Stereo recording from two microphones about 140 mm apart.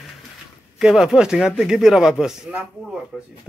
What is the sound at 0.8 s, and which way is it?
A man's voice, 5° right (ahead or behind).